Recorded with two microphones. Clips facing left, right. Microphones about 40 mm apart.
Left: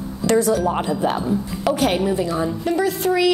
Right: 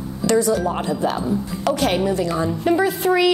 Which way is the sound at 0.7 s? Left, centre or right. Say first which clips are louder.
Left 1 dB; centre.